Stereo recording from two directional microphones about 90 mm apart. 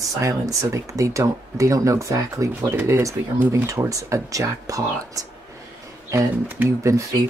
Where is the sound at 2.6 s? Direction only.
25° right (ahead or behind).